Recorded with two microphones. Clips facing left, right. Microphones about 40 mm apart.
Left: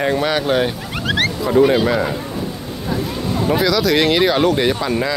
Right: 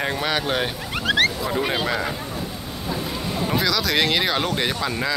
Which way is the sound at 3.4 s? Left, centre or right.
Centre.